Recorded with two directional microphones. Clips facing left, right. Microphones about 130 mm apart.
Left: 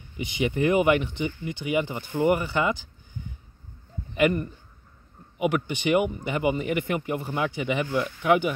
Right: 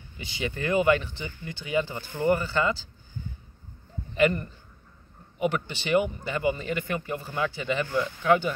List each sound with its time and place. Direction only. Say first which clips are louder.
0.2 s speech: left 7 dB; 20° left (ahead or behind)
4.1 s speech: left 1 dB; 10° left (ahead or behind)